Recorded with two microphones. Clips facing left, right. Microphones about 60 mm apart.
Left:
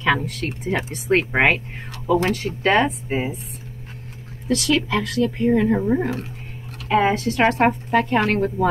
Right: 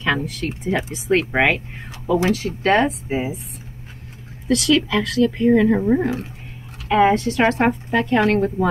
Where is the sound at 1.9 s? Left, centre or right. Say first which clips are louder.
Left 1 dB; left.